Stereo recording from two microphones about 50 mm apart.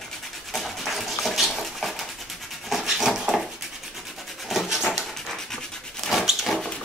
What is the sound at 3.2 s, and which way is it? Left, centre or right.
Dog, centre.